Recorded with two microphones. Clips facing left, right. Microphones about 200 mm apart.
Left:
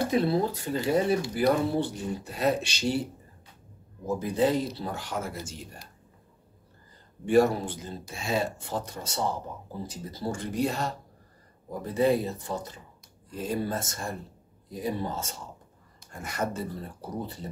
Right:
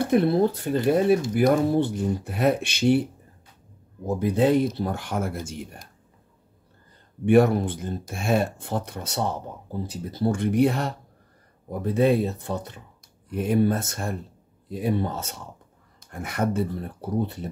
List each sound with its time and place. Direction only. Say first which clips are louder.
0.1 s speech: right 5 dB; 55° right (ahead or behind)
4.2 s speech: right 6 dB; 60° right (ahead or behind)
7.2 s speech: right 4 dB; 60° right (ahead or behind)